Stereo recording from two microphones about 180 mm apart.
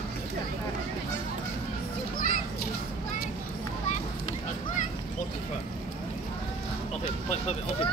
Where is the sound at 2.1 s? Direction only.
50° left (ahead or behind).